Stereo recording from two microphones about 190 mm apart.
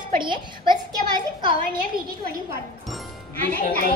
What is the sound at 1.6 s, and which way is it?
Speech, 45° right (ahead or behind).